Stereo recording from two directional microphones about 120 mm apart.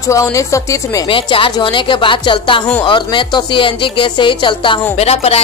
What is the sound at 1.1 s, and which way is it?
Speech, 45° left (ahead or behind).